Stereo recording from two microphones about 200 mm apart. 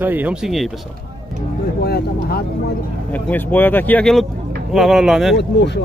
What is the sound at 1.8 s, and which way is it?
Vehicle, 50° left (ahead or behind).